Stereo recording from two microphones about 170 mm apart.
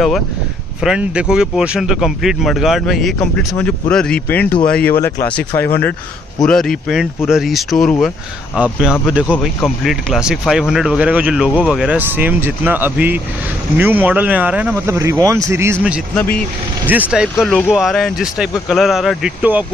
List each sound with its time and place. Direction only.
0.7 s speech: 5° right (ahead or behind)